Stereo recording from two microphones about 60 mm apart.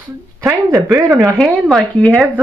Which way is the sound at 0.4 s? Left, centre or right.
Right.